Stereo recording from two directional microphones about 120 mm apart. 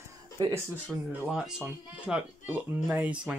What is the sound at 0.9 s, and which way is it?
Speech, 5° right (ahead or behind).